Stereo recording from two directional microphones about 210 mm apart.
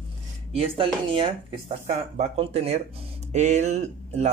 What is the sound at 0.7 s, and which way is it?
Speech, 25° right (ahead or behind).